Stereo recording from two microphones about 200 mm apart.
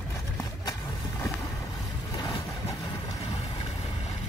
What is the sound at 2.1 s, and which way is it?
Boat, 20° left (ahead or behind).